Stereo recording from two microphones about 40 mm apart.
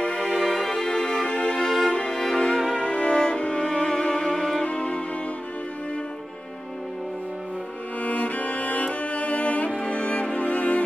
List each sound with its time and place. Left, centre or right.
0.0 s music: left
0.3 s music: centre
0.7 s music: centre
1.7 s music: centre
2.0 s music: left
2.8 s music: left
4.6 s music: left
8.0 s cello: left
9.8 s music: left